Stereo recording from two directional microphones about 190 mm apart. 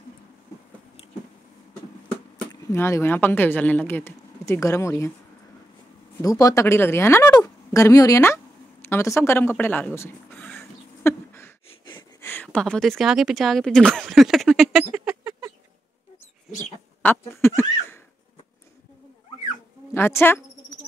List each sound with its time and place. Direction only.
2.5 s speech: 15° left (ahead or behind)
6.2 s speech: 20° left (ahead or behind)
11.1 s a sound: 15° left (ahead or behind)
12.2 s speech: 10° left (ahead or behind); by 15.5 s 10° right (ahead or behind)
17.0 s a sound: 10° left (ahead or behind)
19.9 s a woman's voice: 15° left (ahead or behind)